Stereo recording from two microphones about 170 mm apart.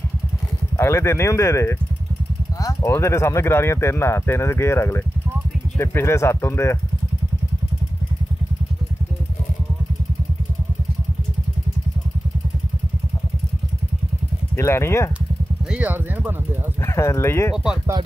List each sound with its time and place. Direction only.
0.7 s speech: 15° left (ahead or behind)
14.6 s speech: 15° left (ahead or behind)
15.7 s speech: 10° right (ahead or behind)
16.8 s speech: 15° left (ahead or behind)